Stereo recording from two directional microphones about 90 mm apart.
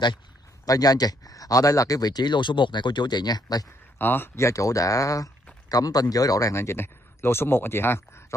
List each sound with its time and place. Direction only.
0.7 s speech: 45° left (ahead or behind)
4.0 s speech: 25° left (ahead or behind)